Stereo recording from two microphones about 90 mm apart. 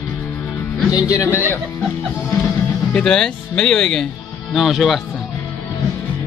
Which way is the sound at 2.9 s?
10° left (ahead or behind).